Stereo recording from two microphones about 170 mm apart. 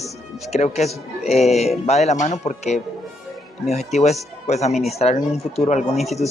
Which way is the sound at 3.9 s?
40° left (ahead or behind).